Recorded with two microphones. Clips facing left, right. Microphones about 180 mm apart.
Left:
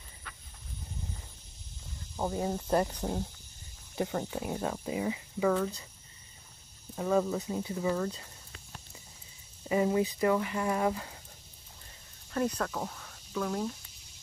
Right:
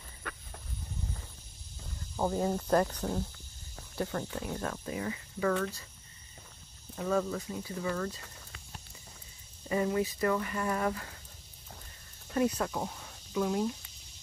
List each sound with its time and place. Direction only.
0.2 s a sound: 65° right (ahead or behind)
2.1 s speech: centre (ahead or behind)
2.7 s speech: 10° left (ahead or behind)
7.0 s speech: 15° left (ahead or behind)
7.7 s speech: 10° left (ahead or behind)
9.8 s speech: 15° left (ahead or behind)
12.4 s speech: 10° right (ahead or behind)